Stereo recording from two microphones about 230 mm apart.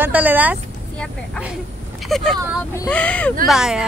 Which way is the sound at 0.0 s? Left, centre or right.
Centre.